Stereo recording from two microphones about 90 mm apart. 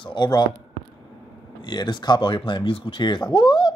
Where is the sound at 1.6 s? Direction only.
55° left (ahead or behind).